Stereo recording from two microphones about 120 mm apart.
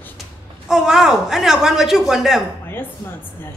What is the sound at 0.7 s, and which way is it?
A man's voice, 5° right (ahead or behind).